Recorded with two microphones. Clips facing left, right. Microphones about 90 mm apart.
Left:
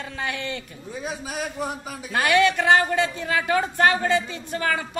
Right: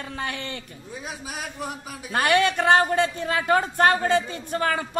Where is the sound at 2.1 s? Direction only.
50° right (ahead or behind).